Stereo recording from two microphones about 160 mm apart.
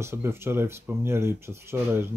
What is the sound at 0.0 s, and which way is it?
Speech, 15° right (ahead or behind).